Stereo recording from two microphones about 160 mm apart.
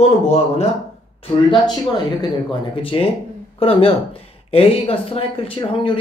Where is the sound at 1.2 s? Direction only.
30° left (ahead or behind).